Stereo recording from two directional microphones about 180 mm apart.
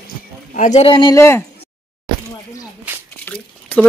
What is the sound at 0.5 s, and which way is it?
Speech, 40° left (ahead or behind).